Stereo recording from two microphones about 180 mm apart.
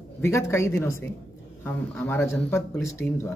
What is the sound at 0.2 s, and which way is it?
Speech, 15° left (ahead or behind).